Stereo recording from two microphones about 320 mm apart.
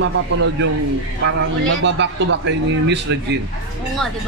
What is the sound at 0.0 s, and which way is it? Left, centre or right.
A man's voice, right.